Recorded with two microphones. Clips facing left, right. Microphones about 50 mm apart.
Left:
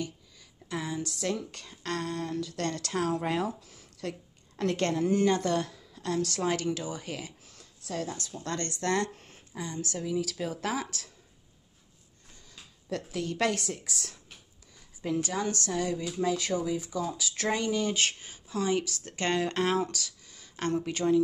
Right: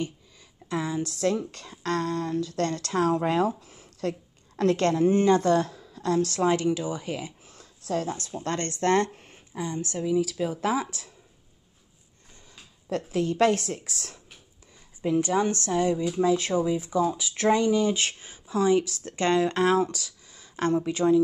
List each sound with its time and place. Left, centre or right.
0.7 s speech: right
4.6 s a woman's voice: right
6.6 s speech: centre
7.4 s speech: right
10.0 s speech: centre
13.1 s speech: right
15.0 s speech: right